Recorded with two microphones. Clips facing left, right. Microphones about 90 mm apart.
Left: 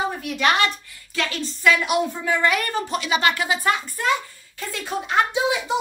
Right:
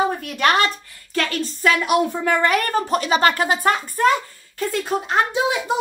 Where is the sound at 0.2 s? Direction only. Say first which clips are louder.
Right 2 dB; 45° right (ahead or behind).